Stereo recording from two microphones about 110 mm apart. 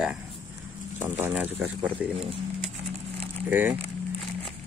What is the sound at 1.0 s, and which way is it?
Speech, 20° right (ahead or behind).